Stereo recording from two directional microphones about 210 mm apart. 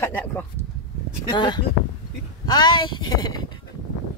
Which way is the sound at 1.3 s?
20° left (ahead or behind).